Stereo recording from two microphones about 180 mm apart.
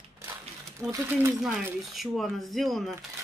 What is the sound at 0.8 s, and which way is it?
Speech, 15° right (ahead or behind).